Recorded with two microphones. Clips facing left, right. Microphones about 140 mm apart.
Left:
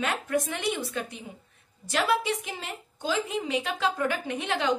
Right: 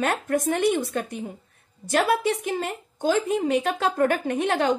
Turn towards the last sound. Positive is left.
turn(degrees=-50)  # may be behind; listen again after turning